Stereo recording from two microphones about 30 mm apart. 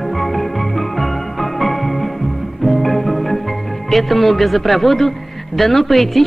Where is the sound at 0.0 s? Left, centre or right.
Centre.